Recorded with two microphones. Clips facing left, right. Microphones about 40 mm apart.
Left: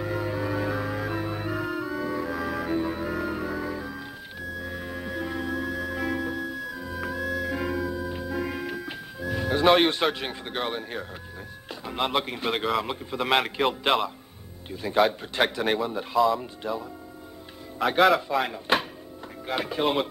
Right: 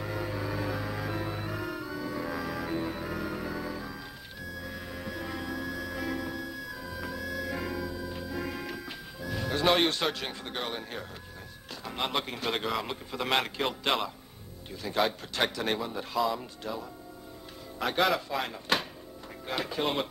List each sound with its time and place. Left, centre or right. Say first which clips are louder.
0.0 s music: left 5 dB; centre
10.5 s a man's voice: left 7 dB; centre
14.7 s a man's voice: left 6 dB; centre